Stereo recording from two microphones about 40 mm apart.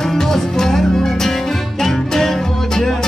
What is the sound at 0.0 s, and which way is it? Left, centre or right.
Music, centre.